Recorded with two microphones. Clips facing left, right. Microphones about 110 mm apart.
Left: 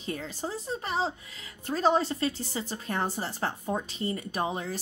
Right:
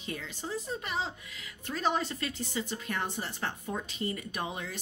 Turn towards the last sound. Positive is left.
turn(degrees=35)  # may be behind; listen again after turning